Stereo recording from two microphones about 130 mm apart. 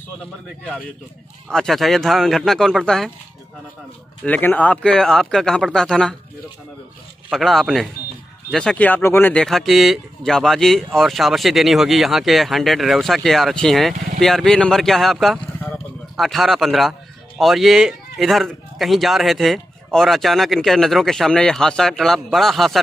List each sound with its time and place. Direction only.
1.5 s speech: centre (ahead or behind)
4.2 s speech: 15° left (ahead or behind)
7.2 s speech: centre (ahead or behind)